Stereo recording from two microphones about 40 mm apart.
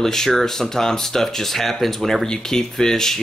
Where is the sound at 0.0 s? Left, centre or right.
Centre.